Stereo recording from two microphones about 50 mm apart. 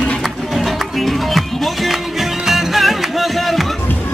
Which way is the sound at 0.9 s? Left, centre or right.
Centre.